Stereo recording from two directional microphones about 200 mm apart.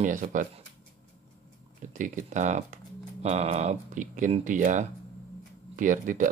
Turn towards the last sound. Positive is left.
turn(degrees=-40)  # may be behind; listen again after turning